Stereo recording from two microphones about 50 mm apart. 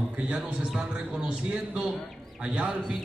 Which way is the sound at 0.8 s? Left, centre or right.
Centre.